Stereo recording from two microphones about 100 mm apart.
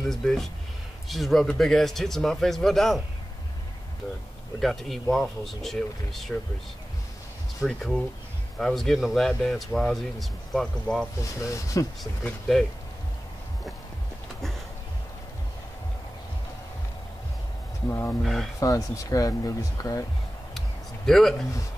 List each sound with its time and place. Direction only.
0.0 s speech: 5° left (ahead or behind)
4.6 s speech: centre (ahead or behind)
7.6 s speech: 5° left (ahead or behind)
11.4 s speech: 35° left (ahead or behind)
17.8 s speech: 30° left (ahead or behind)
18.2 s speech: 5° left (ahead or behind)
18.6 s speech: 35° left (ahead or behind)
20.5 s a sound: 5° left (ahead or behind)